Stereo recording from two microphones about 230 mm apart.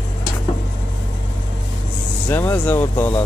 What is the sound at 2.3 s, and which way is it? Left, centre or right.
Speech, centre.